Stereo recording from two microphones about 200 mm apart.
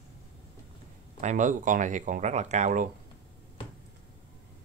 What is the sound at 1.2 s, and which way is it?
Speech, 40° right (ahead or behind).